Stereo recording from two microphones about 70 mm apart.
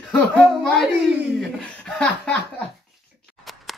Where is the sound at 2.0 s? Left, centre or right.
Centre.